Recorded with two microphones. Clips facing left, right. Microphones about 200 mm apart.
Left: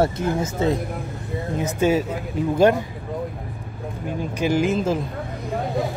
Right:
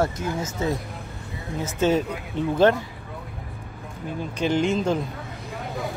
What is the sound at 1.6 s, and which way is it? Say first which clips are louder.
Speech: left 1 dB; 15° left (ahead or behind).